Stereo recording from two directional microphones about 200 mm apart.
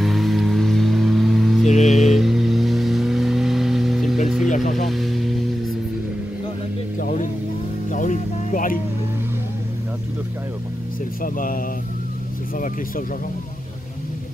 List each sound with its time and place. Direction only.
0.0 s music: centre (ahead or behind)
1.7 s music: 35° left (ahead or behind)
2.0 s vehicle: centre (ahead or behind)
4.5 s speech: 40° left (ahead or behind)
4.8 s music: centre (ahead or behind)
7.0 s music: 40° left (ahead or behind)
7.9 s speech: 40° left (ahead or behind)
11.2 s speech: 45° left (ahead or behind)